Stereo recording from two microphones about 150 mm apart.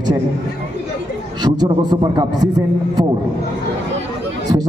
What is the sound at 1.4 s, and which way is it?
A man's voice, 30° right (ahead or behind).